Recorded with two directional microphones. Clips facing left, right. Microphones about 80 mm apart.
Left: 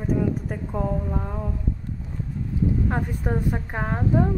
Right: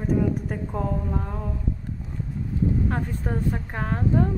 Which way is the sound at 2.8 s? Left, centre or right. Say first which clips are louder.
Left 2 dB; centre.